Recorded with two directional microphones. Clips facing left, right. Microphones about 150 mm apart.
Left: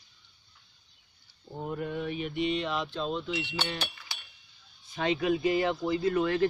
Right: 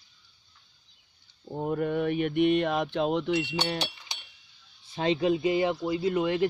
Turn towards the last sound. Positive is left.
turn(degrees=-20)  # may be behind; listen again after turning